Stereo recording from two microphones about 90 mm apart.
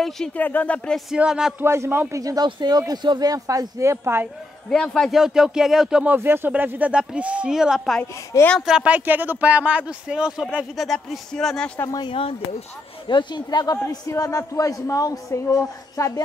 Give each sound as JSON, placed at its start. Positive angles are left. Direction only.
{"t": 0.4, "sound": "speech", "side_deg": 20}
{"t": 1.1, "sound": "speech", "side_deg": -10}
{"t": 1.6, "sound": "a man's voice", "side_deg": -30}
{"t": 2.1, "sound": "speech", "side_deg": -40}
{"t": 2.4, "sound": "speech", "side_deg": -50}
{"t": 4.6, "sound": "speech", "side_deg": 10}
{"t": 5.2, "sound": "speech", "side_deg": -5}
{"t": 6.0, "sound": "speech", "side_deg": -25}
{"t": 12.1, "sound": "speech", "side_deg": 90}
{"t": 13.1, "sound": "speech", "side_deg": 60}